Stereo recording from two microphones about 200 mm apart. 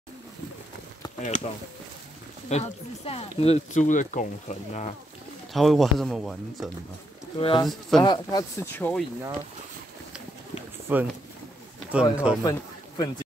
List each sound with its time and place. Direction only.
1.2 s speech: 35° left (ahead or behind)
2.5 s speech: 35° left (ahead or behind)
5.5 s speech: centre (ahead or behind)
7.3 s speech: 25° left (ahead or behind); by 9.0 s 10° left (ahead or behind)
10.9 s speech: 10° right (ahead or behind)
12.4 s speech: 20° left (ahead or behind)